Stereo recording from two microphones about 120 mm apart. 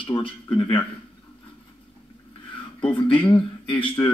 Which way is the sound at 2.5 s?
45° left (ahead or behind).